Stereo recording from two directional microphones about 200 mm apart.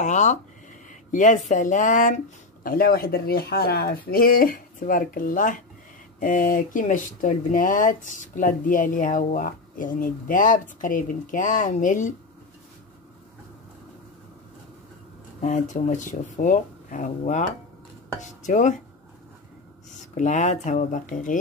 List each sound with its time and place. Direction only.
0.0 s a sound: 35° left (ahead or behind)
0.8 s speech: 40° left (ahead or behind)
15.4 s speech: 40° left (ahead or behind)
20.2 s speech: 35° left (ahead or behind)